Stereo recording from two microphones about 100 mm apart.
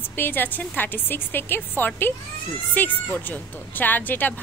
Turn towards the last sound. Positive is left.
turn(degrees=20)  # may be behind; listen again after turning